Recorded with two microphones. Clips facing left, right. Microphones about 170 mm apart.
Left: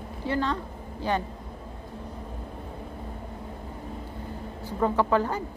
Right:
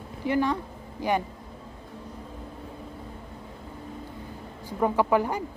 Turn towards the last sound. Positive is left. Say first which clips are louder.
# right 1 dB
turn(degrees=-15)  # may be behind; listen again after turning